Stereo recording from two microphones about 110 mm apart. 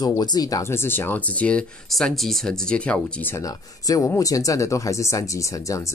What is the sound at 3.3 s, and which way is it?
Speech, 35° left (ahead or behind).